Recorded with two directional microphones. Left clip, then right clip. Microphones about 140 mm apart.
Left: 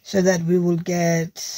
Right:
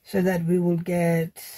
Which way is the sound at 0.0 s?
30° left (ahead or behind).